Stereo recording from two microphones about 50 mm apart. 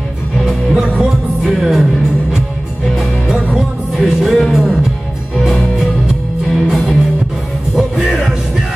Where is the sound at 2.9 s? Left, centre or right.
Centre.